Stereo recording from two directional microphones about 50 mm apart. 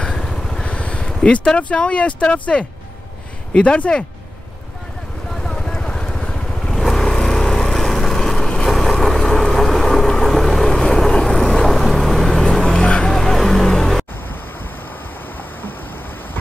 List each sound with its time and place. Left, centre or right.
0.0 s vehicle: centre
0.7 s vehicle: left
1.6 s speech: left
5.3 s vehicle: centre
12.4 s a sound: centre
12.8 s music: centre